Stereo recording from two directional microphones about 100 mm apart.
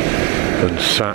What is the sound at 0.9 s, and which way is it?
Speech, 10° right (ahead or behind).